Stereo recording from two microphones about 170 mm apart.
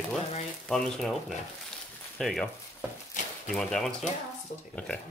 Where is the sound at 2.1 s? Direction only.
Centre (ahead or behind).